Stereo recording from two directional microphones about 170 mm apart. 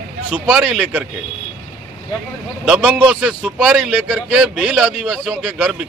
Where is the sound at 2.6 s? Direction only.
5° right (ahead or behind).